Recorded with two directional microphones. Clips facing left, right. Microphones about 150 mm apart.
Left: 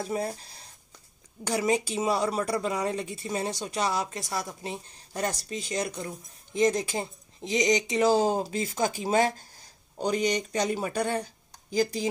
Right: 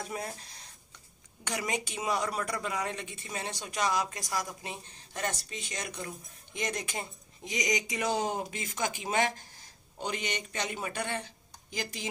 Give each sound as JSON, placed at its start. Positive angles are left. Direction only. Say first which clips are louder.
{"t": 0.0, "sound": "speech", "louder": "left 7 dB", "side_deg": 30}